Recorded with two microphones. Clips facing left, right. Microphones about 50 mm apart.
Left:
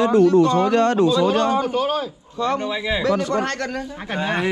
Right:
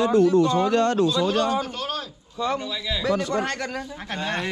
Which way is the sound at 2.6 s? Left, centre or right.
Left.